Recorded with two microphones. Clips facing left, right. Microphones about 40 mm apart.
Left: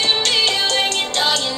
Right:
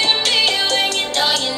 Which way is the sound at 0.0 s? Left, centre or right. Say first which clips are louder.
Right 1 dB; centre.